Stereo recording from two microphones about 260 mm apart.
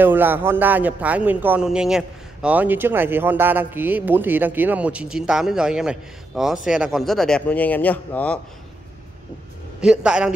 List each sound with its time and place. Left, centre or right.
0.0 s speech: centre
9.8 s speech: centre